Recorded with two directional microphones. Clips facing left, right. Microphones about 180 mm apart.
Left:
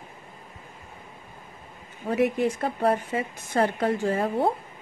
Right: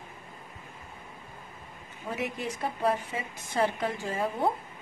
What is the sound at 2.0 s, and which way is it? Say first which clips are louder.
Speech: left 10 dB; 50° left (ahead or behind).